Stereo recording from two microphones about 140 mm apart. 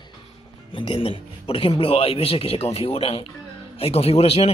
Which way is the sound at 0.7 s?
40° left (ahead or behind).